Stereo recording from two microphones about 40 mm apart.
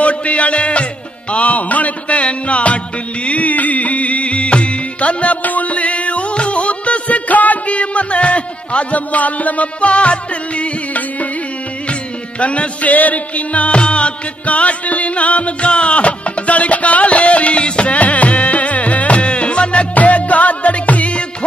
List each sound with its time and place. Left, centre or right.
0.0 s music: left
12.4 s music: left